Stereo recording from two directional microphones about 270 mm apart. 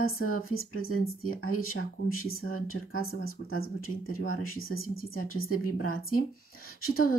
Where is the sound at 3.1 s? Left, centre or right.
Left.